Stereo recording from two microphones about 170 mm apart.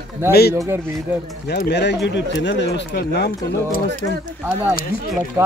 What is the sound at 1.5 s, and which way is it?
Speech, 75° left (ahead or behind).